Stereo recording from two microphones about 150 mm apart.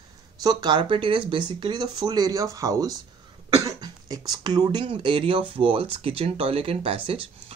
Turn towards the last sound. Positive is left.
turn(degrees=-40)  # may be behind; listen again after turning